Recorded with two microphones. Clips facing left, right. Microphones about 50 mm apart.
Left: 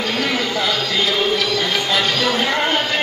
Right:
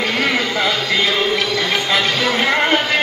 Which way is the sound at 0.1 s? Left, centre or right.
Right.